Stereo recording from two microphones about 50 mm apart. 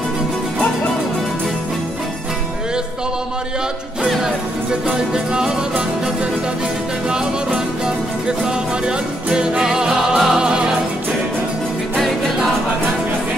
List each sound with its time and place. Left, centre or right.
4.2 s music: centre
7.1 s music: centre